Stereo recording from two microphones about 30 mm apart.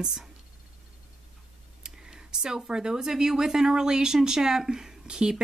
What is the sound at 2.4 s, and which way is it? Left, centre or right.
Speech, right.